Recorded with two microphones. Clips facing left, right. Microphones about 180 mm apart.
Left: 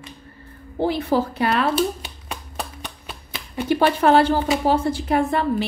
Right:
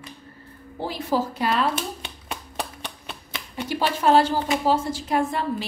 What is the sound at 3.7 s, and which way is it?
A woman's voice, 60° left (ahead or behind).